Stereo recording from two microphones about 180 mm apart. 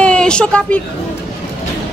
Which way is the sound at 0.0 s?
5° left (ahead or behind).